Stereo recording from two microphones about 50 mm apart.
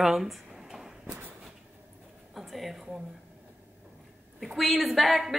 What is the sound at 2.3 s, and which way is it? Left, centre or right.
Speech, centre.